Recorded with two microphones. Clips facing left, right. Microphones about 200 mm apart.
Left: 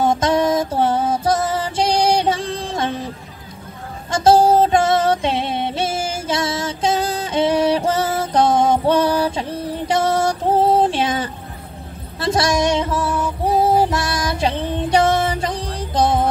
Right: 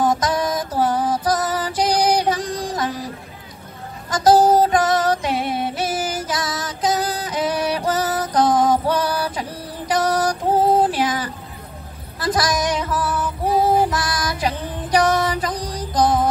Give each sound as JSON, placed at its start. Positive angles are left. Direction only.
{"t": 0.0, "sound": "music", "side_deg": 25}
{"t": 4.1, "sound": "music", "side_deg": 25}
{"t": 12.2, "sound": "female singing", "side_deg": 25}